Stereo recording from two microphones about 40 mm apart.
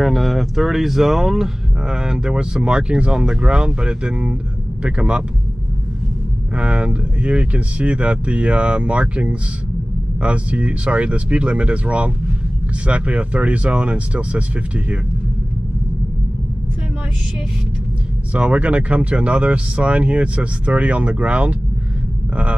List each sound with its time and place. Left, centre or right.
0.0 s speech: centre; by 5.2 s right
6.5 s speech: right
18.3 s speech: right